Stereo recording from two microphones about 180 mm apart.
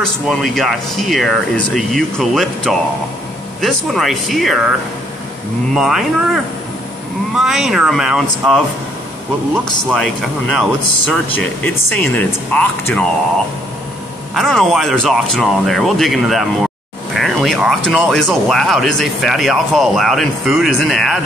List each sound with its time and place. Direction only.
0.0 s speech: centre (ahead or behind)
5.8 s speech: centre (ahead or behind)
10.5 s speech: centre (ahead or behind)
14.3 s speech: centre (ahead or behind)